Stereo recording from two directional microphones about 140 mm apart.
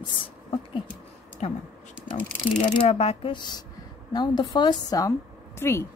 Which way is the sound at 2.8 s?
45° left (ahead or behind).